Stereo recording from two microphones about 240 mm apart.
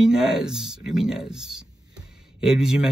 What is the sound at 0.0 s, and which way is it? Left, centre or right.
A man's voice, centre.